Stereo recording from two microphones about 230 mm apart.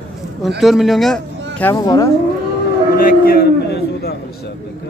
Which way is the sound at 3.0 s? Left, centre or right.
Left.